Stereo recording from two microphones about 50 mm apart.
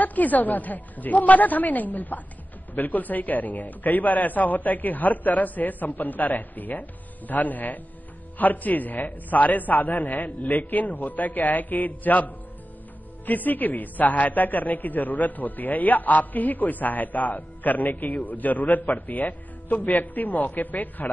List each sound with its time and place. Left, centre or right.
0.0 s a man's voice: left